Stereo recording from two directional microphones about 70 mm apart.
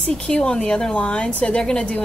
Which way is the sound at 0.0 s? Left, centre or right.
Centre.